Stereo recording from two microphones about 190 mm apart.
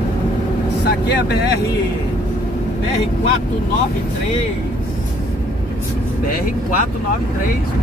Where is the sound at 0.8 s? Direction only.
60° left (ahead or behind).